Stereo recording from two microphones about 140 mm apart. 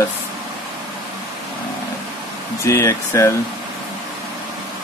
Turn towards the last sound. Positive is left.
turn(degrees=20)  # may be behind; listen again after turning